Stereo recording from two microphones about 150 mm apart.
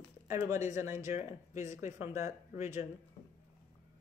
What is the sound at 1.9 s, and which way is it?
Speech, 20° right (ahead or behind).